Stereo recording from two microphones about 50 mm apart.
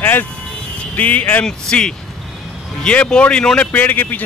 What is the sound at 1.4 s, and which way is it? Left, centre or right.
Speech, centre.